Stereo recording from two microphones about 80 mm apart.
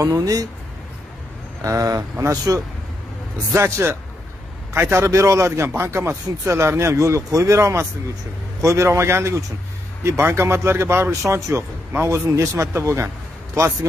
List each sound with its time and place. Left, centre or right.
0.0 s speech: right
1.6 s speech: right